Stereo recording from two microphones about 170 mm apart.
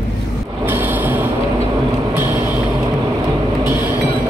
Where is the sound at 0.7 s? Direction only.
10° right (ahead or behind).